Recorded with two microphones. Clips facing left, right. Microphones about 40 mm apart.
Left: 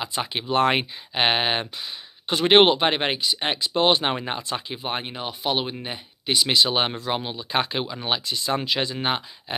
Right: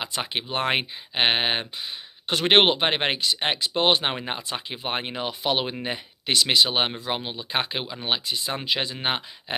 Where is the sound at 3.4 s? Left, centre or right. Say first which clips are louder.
Left 2 dB; right.